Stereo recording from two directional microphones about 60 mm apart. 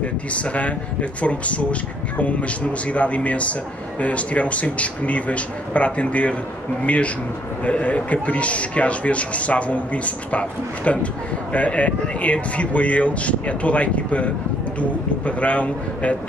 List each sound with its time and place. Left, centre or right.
0.0 s a man's voice: left
7.6 s a man's voice: left